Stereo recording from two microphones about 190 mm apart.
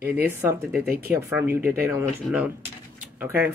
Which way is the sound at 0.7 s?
55° right (ahead or behind).